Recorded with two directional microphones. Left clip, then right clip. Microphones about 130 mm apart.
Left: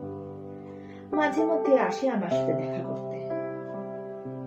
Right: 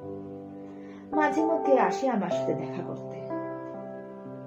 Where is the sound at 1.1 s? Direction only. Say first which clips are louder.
Even; 35° left (ahead or behind).